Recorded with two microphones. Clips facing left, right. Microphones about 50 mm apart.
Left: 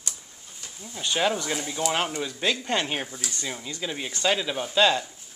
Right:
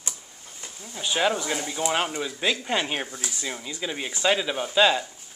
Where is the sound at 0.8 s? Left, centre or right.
Centre.